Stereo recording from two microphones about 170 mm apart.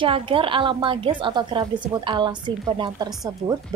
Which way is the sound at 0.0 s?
30° right (ahead or behind).